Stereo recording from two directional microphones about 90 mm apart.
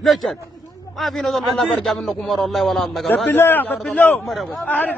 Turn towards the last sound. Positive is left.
turn(degrees=15)  # may be behind; listen again after turning